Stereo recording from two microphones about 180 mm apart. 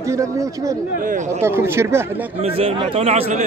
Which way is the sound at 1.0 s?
45° right (ahead or behind).